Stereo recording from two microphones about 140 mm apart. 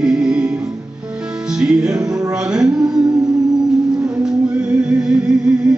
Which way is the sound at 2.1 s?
25° right (ahead or behind).